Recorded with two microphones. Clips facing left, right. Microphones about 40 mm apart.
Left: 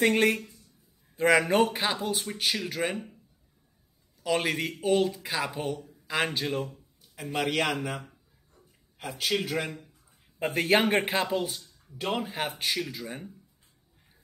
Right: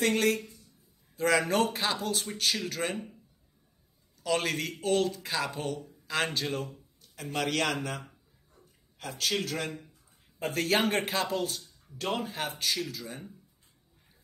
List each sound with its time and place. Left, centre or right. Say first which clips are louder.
0.0 s speech: left 3 dB; left
4.2 s a man's voice: left 2 dB; centre
8.0 s a sound: left 1 dB; centre
9.2 s speech: left 2 dB; centre